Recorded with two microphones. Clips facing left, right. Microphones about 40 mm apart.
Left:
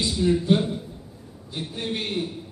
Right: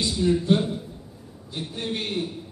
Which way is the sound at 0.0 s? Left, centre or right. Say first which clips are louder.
Even; centre.